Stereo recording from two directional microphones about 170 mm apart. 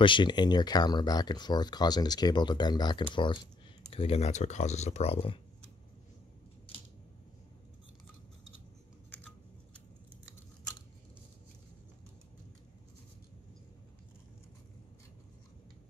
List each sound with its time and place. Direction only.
0.0 s speech: 30° left (ahead or behind)